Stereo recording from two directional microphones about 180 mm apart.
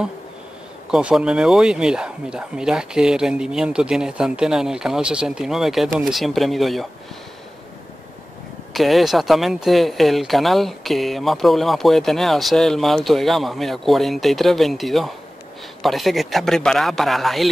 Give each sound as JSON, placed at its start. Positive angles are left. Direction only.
{"t": 0.9, "sound": "speech", "side_deg": -5}
{"t": 8.7, "sound": "speech", "side_deg": 0}